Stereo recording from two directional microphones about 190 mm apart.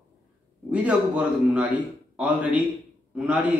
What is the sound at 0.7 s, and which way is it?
A man's voice, 5° right (ahead or behind).